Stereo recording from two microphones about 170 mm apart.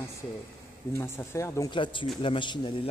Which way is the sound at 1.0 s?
15° left (ahead or behind).